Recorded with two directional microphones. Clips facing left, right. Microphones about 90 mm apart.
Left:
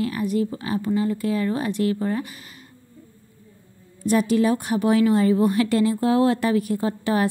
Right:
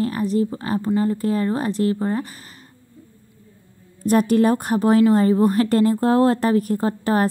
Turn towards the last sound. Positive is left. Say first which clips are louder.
# right 2 dB
turn(degrees=-40)  # may be behind; listen again after turning